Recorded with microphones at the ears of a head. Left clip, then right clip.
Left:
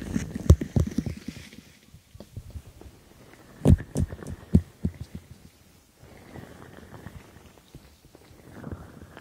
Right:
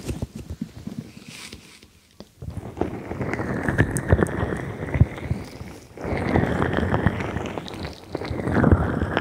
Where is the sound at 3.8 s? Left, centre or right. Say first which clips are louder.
Right 15 dB; right.